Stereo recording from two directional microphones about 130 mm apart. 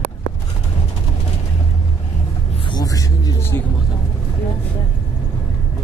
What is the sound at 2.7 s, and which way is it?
Music, 30° left (ahead or behind).